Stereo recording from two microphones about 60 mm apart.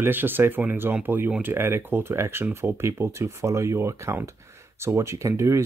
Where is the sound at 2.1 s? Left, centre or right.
Right.